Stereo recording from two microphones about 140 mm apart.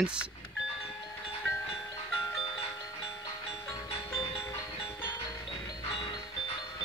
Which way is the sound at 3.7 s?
20° left (ahead or behind).